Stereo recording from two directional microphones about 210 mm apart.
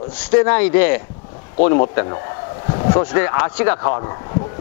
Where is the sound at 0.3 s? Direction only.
10° left (ahead or behind).